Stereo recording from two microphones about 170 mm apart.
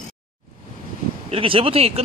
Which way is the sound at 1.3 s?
30° right (ahead or behind).